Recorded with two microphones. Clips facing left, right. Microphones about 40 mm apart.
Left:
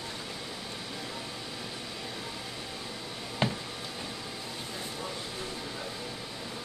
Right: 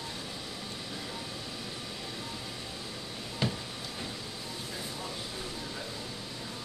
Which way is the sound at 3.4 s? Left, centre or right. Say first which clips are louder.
Left 3 dB; left.